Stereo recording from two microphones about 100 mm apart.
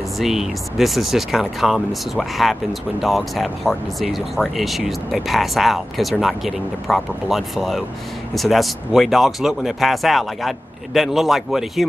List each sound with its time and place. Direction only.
0.2 s speech: 5° right (ahead or behind)